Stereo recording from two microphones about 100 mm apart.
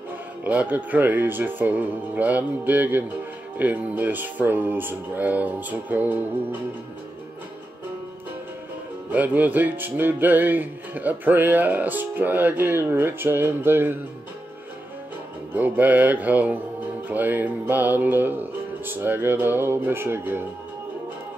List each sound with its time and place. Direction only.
0.4 s speech: 15° right (ahead or behind)
9.1 s music: 15° right (ahead or behind)
15.5 s speech: 15° right (ahead or behind)
17.1 s music: 20° right (ahead or behind)